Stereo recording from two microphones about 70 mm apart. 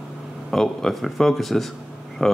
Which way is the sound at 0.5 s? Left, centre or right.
Centre.